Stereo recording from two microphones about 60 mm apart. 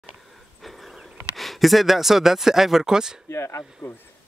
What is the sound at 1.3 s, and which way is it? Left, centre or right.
Speech, centre.